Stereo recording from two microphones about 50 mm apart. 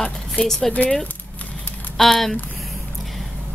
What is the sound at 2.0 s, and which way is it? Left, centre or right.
Speech, centre.